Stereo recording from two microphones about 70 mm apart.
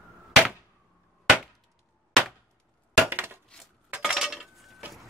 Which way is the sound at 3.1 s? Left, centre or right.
Right.